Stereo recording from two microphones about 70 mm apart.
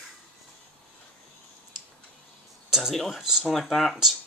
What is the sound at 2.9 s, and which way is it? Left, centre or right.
Speech, centre.